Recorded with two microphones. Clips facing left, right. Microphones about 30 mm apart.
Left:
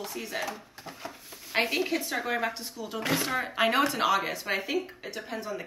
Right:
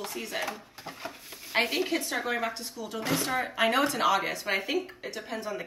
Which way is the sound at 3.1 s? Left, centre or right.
Left.